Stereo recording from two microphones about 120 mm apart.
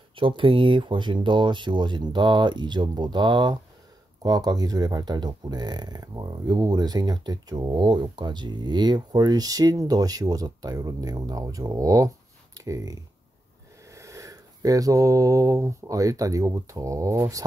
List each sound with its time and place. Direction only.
0.1 s speech: 45° right (ahead or behind); by 17.5 s 25° right (ahead or behind)